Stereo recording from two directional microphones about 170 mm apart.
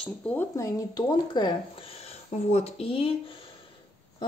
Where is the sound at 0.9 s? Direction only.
25° left (ahead or behind).